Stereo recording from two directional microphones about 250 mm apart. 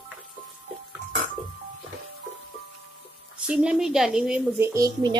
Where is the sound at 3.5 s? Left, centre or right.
Centre.